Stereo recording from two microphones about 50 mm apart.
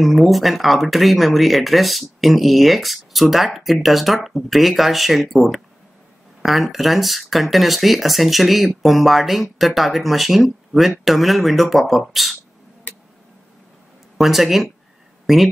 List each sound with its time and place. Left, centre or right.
0.0 s speech: centre
14.1 s speech: centre